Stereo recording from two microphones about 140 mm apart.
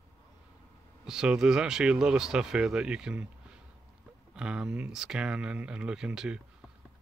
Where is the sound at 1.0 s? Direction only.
5° right (ahead or behind).